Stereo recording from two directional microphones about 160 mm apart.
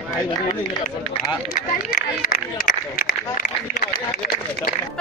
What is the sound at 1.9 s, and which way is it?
Speech, 65° left (ahead or behind).